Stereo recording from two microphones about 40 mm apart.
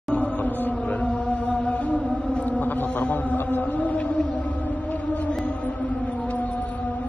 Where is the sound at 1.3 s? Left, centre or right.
Left.